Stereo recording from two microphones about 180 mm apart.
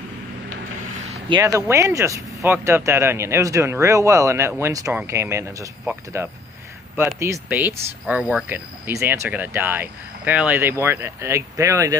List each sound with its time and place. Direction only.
1.3 s speech: 15° right (ahead or behind)